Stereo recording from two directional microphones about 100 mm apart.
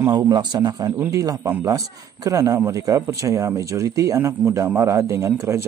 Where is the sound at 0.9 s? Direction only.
30° right (ahead or behind).